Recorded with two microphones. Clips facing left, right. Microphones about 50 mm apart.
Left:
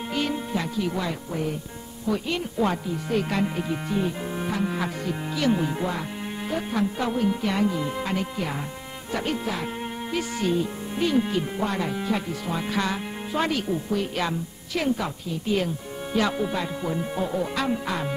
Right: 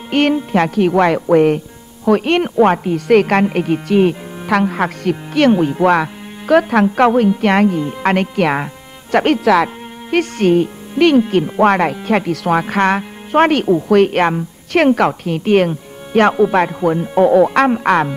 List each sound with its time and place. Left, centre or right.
0.1 s speech: right
10.1 s speech: right